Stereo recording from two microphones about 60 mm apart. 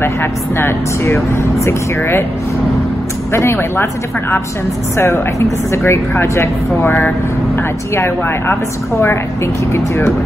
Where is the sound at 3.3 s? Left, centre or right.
Left.